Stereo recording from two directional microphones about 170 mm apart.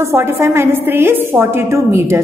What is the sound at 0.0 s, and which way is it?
A woman's voice, 15° right (ahead or behind).